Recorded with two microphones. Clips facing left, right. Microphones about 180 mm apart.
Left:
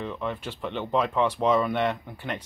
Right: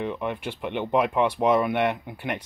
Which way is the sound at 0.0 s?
15° right (ahead or behind).